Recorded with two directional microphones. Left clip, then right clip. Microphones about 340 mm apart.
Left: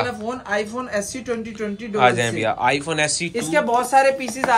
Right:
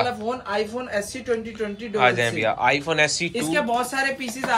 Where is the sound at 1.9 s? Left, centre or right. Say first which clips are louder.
Left 2 dB; centre.